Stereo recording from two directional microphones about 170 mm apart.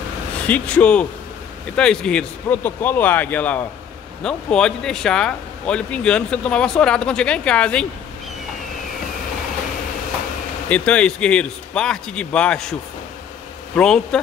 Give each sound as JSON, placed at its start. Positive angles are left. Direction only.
{"t": 0.5, "sound": "speech", "side_deg": 5}
{"t": 10.7, "sound": "speech", "side_deg": 5}
{"t": 13.7, "sound": "speech", "side_deg": 5}